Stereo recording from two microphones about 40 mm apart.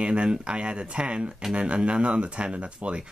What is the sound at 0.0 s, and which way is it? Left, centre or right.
Speech, right.